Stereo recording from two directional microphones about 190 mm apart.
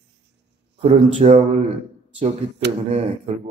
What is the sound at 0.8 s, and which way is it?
Speech, 35° right (ahead or behind).